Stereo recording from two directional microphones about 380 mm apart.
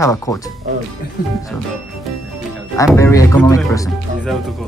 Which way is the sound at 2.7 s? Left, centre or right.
Centre.